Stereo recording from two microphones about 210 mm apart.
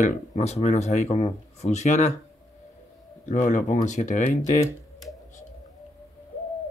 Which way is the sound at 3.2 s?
35° left (ahead or behind).